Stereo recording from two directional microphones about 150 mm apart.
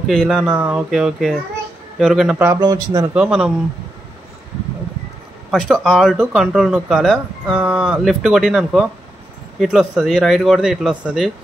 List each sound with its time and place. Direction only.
0.0 s speech: centre (ahead or behind)
2.4 s speech: 25° right (ahead or behind)
3.2 s speech: 5° right (ahead or behind)
5.5 s speech: centre (ahead or behind)